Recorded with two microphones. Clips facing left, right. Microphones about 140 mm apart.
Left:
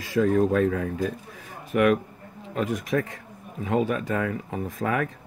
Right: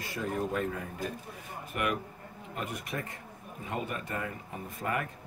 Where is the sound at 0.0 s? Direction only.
90° left.